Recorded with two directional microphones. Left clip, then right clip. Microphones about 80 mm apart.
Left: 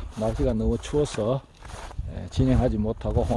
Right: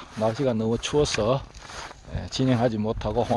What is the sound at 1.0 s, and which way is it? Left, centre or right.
Speech, left.